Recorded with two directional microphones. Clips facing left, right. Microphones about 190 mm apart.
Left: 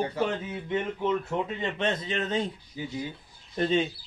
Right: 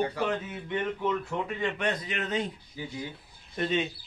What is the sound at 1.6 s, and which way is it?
Speech, 25° left (ahead or behind).